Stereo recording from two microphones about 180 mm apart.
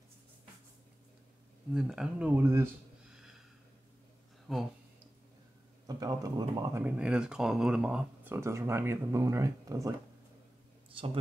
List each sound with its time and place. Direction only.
1.7 s speech: 5° right (ahead or behind)
5.9 s a man's voice: 20° right (ahead or behind)
6.8 s speech: 5° right (ahead or behind)